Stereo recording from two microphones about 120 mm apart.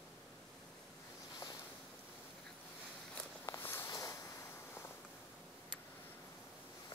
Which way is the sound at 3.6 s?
20° left (ahead or behind).